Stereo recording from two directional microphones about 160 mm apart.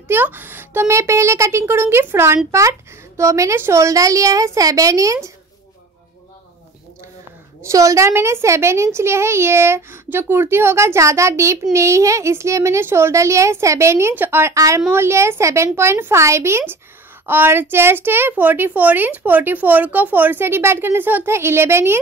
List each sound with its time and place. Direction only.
0.1 s a woman's voice: 10° right (ahead or behind)
7.6 s a woman's voice: 20° right (ahead or behind)